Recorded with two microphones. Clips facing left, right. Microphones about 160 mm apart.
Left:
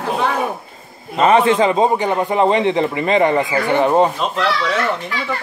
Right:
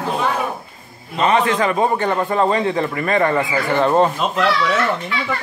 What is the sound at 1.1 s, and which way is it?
A man's voice, 30° left (ahead or behind).